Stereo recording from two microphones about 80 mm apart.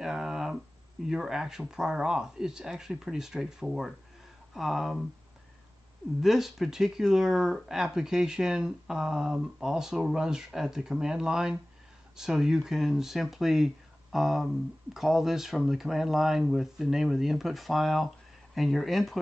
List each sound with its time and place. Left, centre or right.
0.0 s a sound: centre
1.0 s speech: centre
6.2 s speech: centre